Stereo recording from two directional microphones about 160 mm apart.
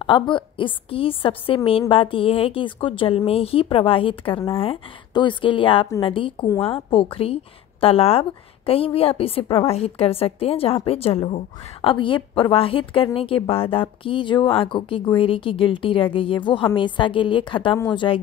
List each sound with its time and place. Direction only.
0.0 s a woman's voice: 30° left (ahead or behind)